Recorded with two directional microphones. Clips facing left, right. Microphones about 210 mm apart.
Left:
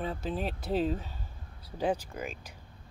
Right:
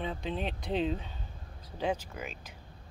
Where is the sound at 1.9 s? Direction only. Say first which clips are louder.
Left 2 dB; 5° right (ahead or behind).